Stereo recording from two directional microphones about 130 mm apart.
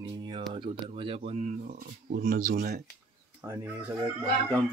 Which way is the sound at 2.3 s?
90° right.